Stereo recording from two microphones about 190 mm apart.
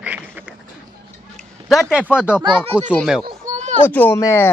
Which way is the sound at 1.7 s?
Centre (ahead or behind).